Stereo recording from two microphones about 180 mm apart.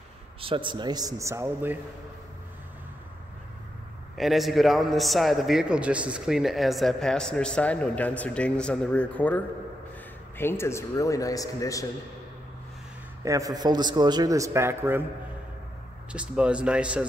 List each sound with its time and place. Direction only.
0.4 s a man's voice: 30° right (ahead or behind); by 1.8 s 15° right (ahead or behind)
4.2 s a man's voice: centre (ahead or behind); by 11.8 s 20° left (ahead or behind)
13.2 s a man's voice: 20° right (ahead or behind)
16.1 s speech: 5° right (ahead or behind)